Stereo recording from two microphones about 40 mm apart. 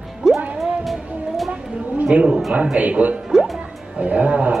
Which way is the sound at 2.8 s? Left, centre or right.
Right.